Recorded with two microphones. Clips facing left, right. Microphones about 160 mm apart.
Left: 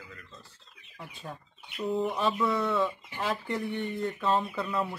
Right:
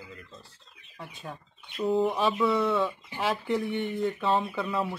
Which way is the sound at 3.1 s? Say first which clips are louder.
Right 4 dB; 20° right (ahead or behind).